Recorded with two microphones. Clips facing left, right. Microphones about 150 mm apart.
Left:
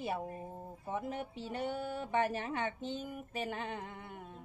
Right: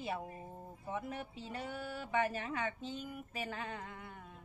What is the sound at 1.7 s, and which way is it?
Speech, 25° left (ahead or behind).